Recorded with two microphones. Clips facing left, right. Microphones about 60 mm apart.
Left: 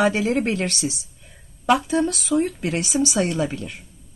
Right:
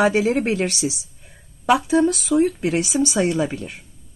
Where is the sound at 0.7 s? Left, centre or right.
Left.